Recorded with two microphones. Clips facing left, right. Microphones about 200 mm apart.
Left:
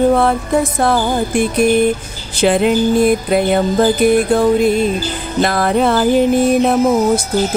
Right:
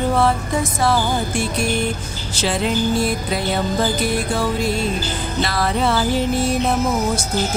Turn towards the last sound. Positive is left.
turn(degrees=55)  # may be behind; listen again after turning